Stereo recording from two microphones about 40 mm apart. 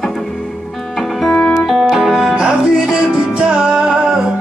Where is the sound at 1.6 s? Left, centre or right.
Centre.